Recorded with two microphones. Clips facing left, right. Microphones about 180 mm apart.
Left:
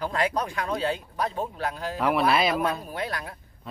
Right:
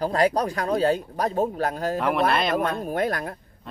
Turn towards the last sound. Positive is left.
turn(degrees=-50)  # may be behind; listen again after turning